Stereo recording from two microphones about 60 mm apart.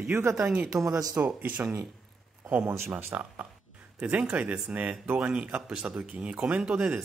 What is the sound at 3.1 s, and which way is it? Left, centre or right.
Speech, right.